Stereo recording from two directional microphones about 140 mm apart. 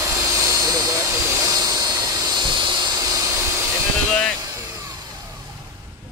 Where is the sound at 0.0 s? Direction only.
20° right (ahead or behind).